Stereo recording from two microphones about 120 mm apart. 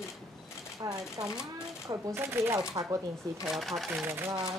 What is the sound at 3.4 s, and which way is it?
Speech, centre (ahead or behind).